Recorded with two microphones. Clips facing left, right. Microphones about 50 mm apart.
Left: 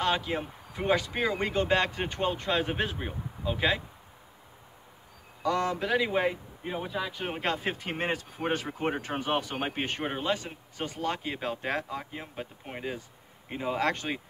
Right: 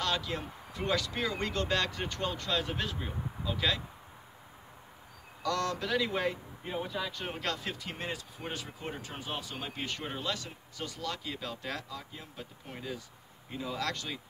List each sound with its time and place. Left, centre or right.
0.0 s speech: left
5.4 s speech: centre
7.3 s speech: left